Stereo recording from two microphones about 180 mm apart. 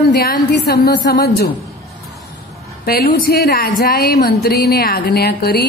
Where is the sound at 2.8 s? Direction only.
55° left (ahead or behind).